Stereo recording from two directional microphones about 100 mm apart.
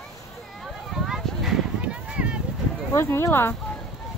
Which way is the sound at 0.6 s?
5° right (ahead or behind).